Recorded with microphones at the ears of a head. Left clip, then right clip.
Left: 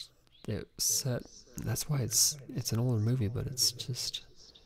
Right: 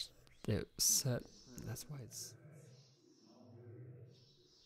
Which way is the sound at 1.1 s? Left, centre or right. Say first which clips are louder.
Left 5 dB; left.